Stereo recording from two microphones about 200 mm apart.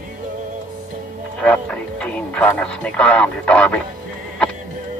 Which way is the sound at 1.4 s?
5° left (ahead or behind).